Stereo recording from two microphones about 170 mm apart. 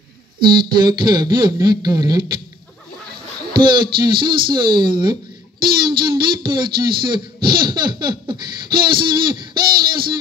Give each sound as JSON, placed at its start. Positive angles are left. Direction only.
{"t": 0.6, "sound": "speech", "side_deg": -25}
{"t": 3.5, "sound": "speech", "side_deg": -25}